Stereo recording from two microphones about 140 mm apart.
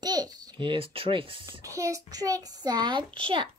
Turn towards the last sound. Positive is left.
turn(degrees=-40)  # may be behind; listen again after turning